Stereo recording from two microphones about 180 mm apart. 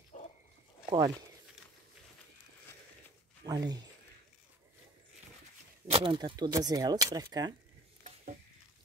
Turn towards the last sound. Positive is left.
turn(degrees=-20)  # may be behind; listen again after turning